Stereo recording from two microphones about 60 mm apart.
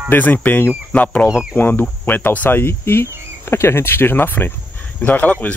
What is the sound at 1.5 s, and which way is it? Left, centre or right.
Speech, left.